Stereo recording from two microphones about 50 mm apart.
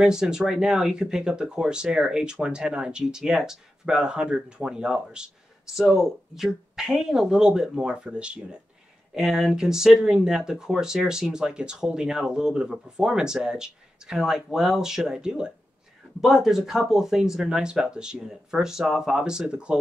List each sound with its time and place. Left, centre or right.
0.0 s speech: centre
5.8 s speech: centre; by 8.5 s right
9.1 s speech: centre
16.2 s speech: centre